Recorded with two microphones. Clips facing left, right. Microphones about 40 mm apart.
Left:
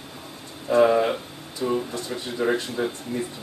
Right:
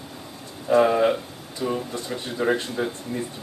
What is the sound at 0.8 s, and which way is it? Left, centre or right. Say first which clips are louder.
Speech: left 1 dB; centre.